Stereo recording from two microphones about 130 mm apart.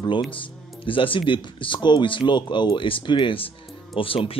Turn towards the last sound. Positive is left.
turn(degrees=45)  # may be behind; listen again after turning